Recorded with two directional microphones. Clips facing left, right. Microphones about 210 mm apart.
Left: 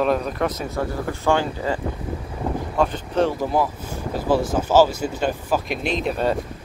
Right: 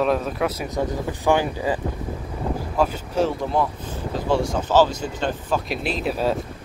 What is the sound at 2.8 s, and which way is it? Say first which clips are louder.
Speech: left 1 dB; 5° right (ahead or behind).